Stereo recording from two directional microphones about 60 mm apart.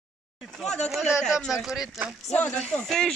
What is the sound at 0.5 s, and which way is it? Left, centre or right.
Speech, centre.